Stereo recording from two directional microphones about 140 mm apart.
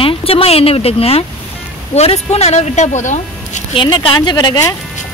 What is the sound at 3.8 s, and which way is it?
Speech, 35° left (ahead or behind).